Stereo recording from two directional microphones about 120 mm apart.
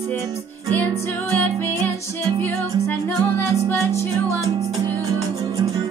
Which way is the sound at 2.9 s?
20° left (ahead or behind).